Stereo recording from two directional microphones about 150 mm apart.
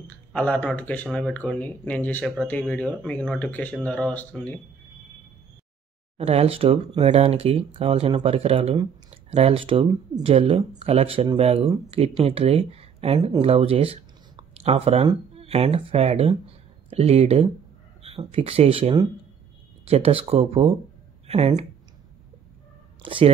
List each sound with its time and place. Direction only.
0.0 s speech: 10° left (ahead or behind)
6.1 s speech: 45° right (ahead or behind)
23.0 s speech: 35° right (ahead or behind)